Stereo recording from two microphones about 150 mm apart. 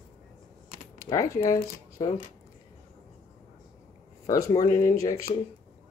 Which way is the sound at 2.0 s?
30° left (ahead or behind).